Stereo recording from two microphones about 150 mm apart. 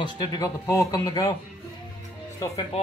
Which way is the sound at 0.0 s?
25° left (ahead or behind).